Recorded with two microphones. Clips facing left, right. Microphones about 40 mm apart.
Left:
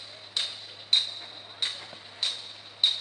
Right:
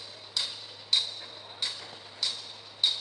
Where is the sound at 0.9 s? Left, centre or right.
Left.